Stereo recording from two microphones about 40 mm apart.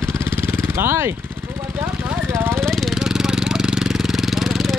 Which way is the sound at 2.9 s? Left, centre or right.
Centre.